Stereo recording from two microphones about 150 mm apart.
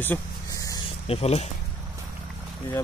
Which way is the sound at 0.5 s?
20° left (ahead or behind).